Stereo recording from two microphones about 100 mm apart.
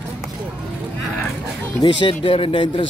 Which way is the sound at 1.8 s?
60° left (ahead or behind).